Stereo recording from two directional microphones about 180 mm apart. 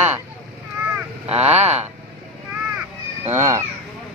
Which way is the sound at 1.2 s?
35° right (ahead or behind).